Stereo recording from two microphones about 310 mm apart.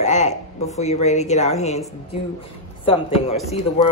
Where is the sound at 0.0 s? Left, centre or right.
Left.